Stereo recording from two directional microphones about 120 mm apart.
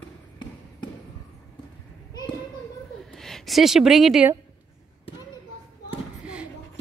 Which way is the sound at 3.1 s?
5° left (ahead or behind).